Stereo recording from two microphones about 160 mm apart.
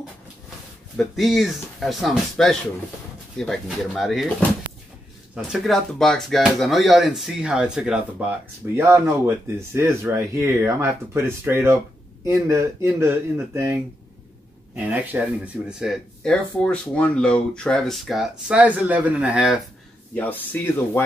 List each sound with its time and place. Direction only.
0.9 s speech: centre (ahead or behind)
8.7 s speech: 15° right (ahead or behind)
14.8 s speech: 10° right (ahead or behind)
20.2 s speech: 10° left (ahead or behind)